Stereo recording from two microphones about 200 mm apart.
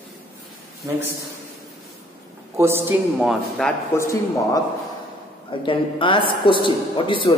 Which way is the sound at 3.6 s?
15° left (ahead or behind).